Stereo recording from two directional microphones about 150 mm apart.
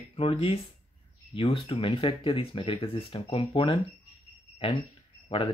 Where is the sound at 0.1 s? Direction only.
40° left (ahead or behind).